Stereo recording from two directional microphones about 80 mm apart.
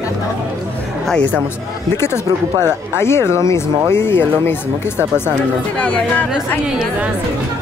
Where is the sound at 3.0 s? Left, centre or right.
Left.